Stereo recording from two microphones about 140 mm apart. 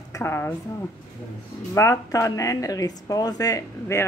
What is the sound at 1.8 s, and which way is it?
Speech, 20° left (ahead or behind).